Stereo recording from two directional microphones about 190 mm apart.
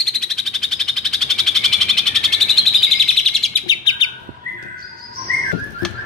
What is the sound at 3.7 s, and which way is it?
Bird, 25° left (ahead or behind).